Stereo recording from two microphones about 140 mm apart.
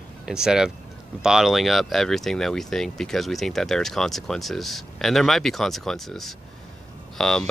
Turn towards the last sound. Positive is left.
turn(degrees=5)  # may be behind; listen again after turning